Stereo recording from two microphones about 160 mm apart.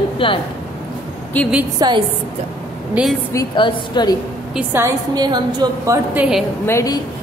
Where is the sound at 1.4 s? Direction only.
10° left (ahead or behind).